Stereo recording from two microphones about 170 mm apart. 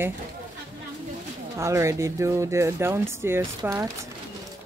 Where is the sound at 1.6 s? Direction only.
15° right (ahead or behind).